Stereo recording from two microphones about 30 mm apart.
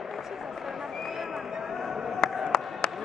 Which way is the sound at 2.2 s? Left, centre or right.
Left.